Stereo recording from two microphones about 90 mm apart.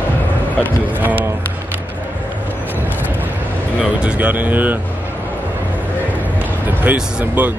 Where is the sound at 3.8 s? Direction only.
10° right (ahead or behind).